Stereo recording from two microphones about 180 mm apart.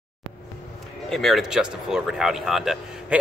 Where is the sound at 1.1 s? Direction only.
Centre (ahead or behind).